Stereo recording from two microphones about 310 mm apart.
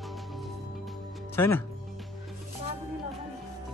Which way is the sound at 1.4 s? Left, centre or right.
Centre.